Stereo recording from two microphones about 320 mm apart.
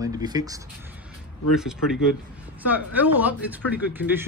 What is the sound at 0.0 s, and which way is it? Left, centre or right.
A woman's voice, centre.